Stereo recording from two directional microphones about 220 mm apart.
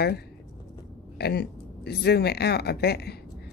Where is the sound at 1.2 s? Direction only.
45° left (ahead or behind).